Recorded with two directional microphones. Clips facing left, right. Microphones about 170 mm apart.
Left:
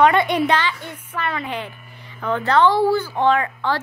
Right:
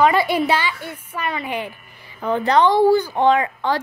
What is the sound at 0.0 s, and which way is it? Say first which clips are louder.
A woman's voice: left 1 dB; 5° right (ahead or behind).